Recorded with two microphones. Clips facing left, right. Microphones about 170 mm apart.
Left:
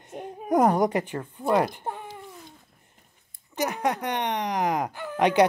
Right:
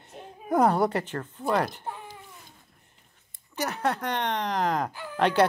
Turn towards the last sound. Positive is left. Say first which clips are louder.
# left 2 dB
turn(degrees=15)  # may be behind; listen again after turning